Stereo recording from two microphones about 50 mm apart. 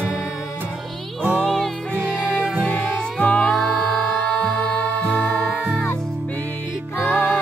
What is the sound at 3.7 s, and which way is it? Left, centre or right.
Music, centre.